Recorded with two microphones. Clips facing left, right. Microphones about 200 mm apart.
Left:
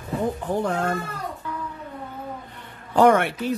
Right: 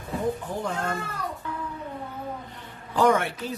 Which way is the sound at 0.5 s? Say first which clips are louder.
Left 6 dB; 60° left (ahead or behind).